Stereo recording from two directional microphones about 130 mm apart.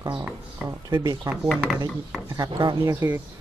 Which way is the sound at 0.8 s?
30° right (ahead or behind).